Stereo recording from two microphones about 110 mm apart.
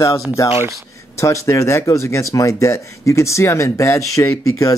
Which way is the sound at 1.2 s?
30° left (ahead or behind).